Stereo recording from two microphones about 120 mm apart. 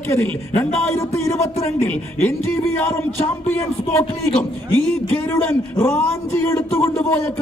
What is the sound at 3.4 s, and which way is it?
Speech, 15° left (ahead or behind).